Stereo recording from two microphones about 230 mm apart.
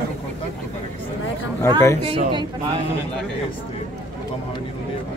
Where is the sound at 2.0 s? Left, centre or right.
Right.